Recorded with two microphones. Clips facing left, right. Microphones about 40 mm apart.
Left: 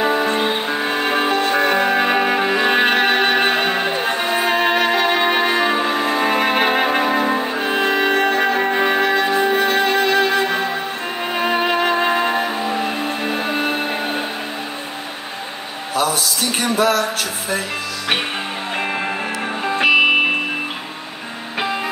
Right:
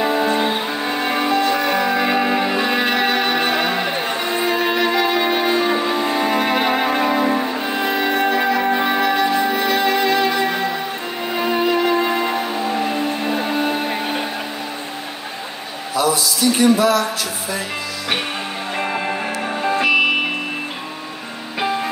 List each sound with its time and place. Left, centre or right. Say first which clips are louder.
0.0 s music: even; left
0.8 s music: left 1 dB; left; by 7.6 s centre
7.6 s music: left 2 dB; left
12.6 s music: even; centre
13.3 s music: even; left
15.9 s music: right 1 dB; left
18.8 s music: right 1 dB; centre